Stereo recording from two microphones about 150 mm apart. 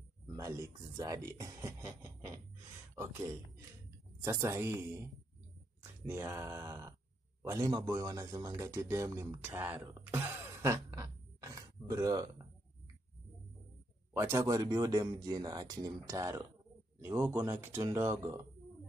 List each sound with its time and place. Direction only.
0.4 s speech: 20° right (ahead or behind)
9.8 s a sound: 20° right (ahead or behind)
14.1 s speech: 20° right (ahead or behind)